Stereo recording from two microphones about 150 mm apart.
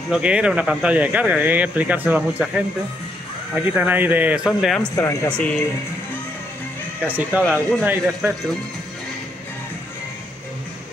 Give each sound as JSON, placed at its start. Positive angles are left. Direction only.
{"t": 0.1, "sound": "speech", "side_deg": -5}
{"t": 4.9, "sound": "speech", "side_deg": 20}
{"t": 7.1, "sound": "speech", "side_deg": -10}